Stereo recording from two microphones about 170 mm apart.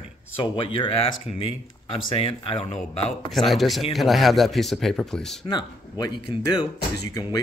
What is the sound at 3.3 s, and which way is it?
Speech, centre (ahead or behind).